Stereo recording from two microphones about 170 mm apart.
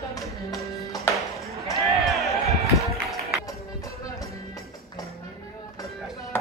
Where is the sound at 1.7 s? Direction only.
Centre (ahead or behind).